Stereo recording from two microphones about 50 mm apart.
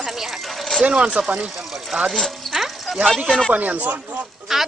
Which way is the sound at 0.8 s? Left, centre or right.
Right.